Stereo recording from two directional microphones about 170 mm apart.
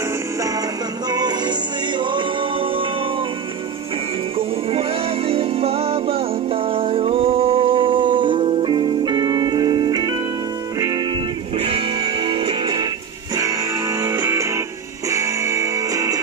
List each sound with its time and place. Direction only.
1.1 s music: 25° right (ahead or behind)
4.4 s music: 35° right (ahead or behind)
11.5 s music: 35° right (ahead or behind)
13.4 s music: 20° right (ahead or behind)